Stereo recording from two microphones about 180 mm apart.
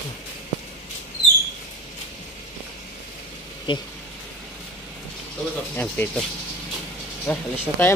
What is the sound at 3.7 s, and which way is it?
Speech, 25° left (ahead or behind).